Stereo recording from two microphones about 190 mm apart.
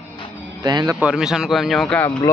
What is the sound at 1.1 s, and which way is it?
Speech, 5° right (ahead or behind).